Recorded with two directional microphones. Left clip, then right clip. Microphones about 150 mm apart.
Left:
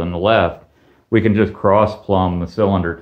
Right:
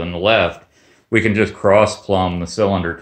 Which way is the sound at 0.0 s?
10° right (ahead or behind).